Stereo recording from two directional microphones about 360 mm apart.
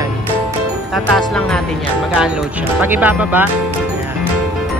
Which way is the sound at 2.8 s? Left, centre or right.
Centre.